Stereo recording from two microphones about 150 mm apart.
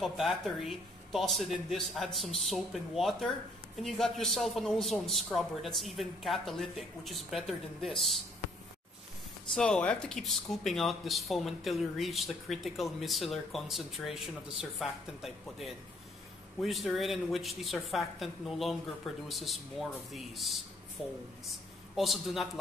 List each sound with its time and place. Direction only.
0.0 s speech: centre (ahead or behind)
8.4 s a sound: 45° left (ahead or behind)
9.5 s speech: 5° left (ahead or behind)